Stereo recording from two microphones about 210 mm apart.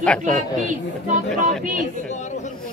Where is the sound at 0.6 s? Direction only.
35° right (ahead or behind).